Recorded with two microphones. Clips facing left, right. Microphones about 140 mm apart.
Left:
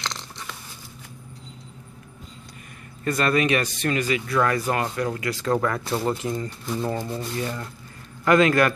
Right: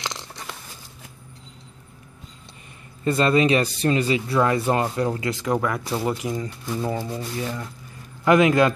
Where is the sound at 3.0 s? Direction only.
25° right (ahead or behind).